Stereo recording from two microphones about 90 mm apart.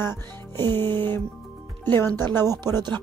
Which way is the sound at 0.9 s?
60° right (ahead or behind).